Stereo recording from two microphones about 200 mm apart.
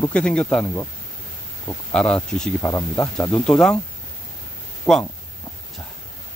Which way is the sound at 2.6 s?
15° left (ahead or behind).